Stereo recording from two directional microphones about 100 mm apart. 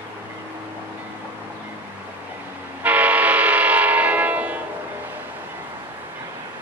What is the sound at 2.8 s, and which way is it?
Train horn, 15° right (ahead or behind).